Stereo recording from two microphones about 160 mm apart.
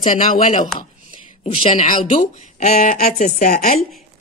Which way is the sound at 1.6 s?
35° left (ahead or behind).